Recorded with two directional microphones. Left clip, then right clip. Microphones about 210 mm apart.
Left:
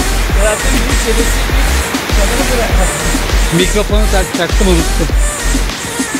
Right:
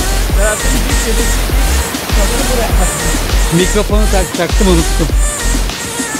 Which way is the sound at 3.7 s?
15° right (ahead or behind).